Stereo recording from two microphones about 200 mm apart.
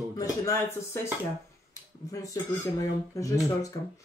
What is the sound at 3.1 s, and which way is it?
Cutlery, 15° left (ahead or behind).